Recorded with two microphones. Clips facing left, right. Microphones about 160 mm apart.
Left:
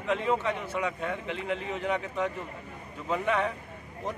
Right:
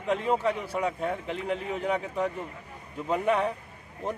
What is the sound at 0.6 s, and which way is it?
Speech, 35° right (ahead or behind).